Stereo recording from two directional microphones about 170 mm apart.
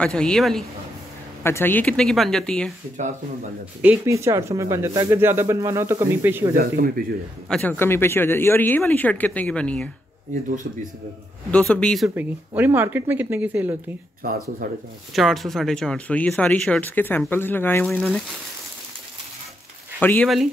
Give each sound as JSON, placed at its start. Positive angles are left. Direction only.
{"t": 0.0, "sound": "speech", "side_deg": 5}
{"t": 1.4, "sound": "speech", "side_deg": 15}
{"t": 3.8, "sound": "speech", "side_deg": -5}
{"t": 6.5, "sound": "speech", "side_deg": -60}
{"t": 7.4, "sound": "speech", "side_deg": 5}
{"t": 10.5, "sound": "speech", "side_deg": -50}
{"t": 11.5, "sound": "speech", "side_deg": 5}
{"t": 12.2, "sound": "speech", "side_deg": -10}
{"t": 14.2, "sound": "speech", "side_deg": -60}
{"t": 15.1, "sound": "speech", "side_deg": 0}
{"t": 20.0, "sound": "speech", "side_deg": 10}